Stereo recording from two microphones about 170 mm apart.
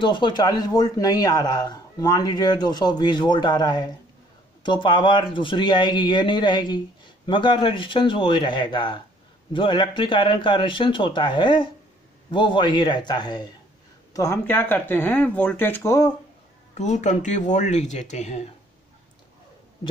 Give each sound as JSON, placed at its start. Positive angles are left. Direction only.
{"t": 0.0, "sound": "speech", "side_deg": 25}
{"t": 16.7, "sound": "speech", "side_deg": 45}